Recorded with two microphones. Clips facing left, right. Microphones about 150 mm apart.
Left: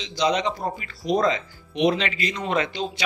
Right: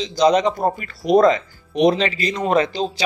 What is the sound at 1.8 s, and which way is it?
A man's voice, 35° right (ahead or behind).